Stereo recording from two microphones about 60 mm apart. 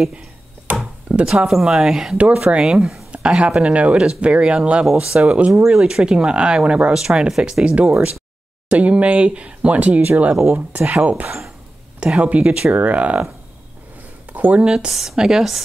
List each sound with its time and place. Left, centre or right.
0.7 s a sound: right
1.0 s speech: centre
7.6 s speech: centre
11.2 s speech: centre
12.0 s speech: centre
14.3 s speech: right
14.9 s speech: centre